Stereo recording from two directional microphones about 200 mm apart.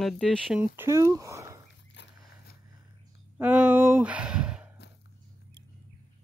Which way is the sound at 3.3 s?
10° right (ahead or behind).